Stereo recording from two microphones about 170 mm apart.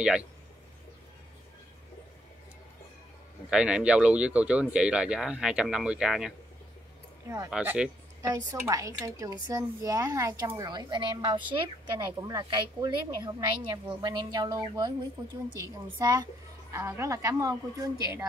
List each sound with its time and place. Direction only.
0.0 s speech: 5° right (ahead or behind)
3.4 s speech: 5° right (ahead or behind)
7.2 s a woman's voice: 20° right (ahead or behind)
7.5 s speech: 5° right (ahead or behind)
8.2 s a woman's voice: 20° right (ahead or behind)